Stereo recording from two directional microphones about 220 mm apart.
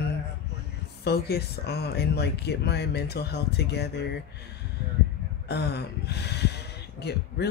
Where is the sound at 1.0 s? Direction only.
45° left (ahead or behind).